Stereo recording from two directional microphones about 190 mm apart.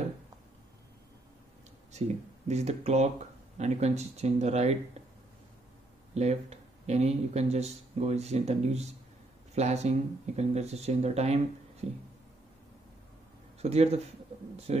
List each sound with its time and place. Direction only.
1.9 s speech: 35° right (ahead or behind)
6.1 s speech: 35° right (ahead or behind)
13.6 s speech: 35° right (ahead or behind)